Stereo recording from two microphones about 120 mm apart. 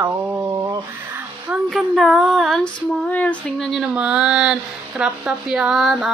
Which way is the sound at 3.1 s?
10° left (ahead or behind).